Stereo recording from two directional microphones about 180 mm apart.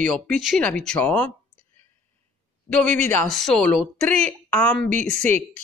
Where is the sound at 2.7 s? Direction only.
5° left (ahead or behind).